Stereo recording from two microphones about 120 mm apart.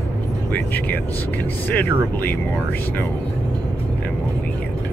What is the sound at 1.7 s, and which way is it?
Speech, 15° left (ahead or behind).